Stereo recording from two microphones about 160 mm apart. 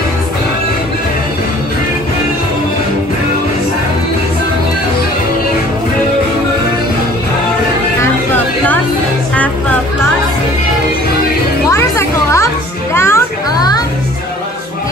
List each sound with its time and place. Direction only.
11.7 s music: 15° left (ahead or behind)
12.9 s children playing: 15° left (ahead or behind)